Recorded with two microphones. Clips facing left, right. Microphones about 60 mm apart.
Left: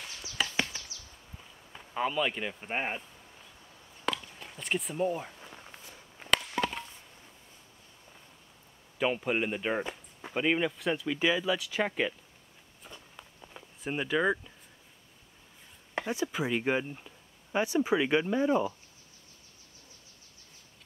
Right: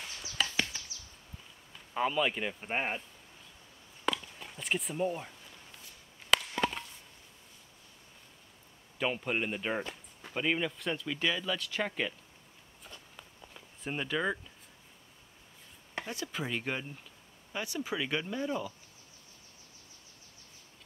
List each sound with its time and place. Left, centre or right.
0.4 s chop: centre
2.0 s speech: centre
4.0 s chop: centre
5.4 s walk: left
6.6 s chop: centre
8.9 s speech: centre
12.8 s walk: centre
13.8 s speech: centre
15.9 s a sound: centre
16.3 s speech: centre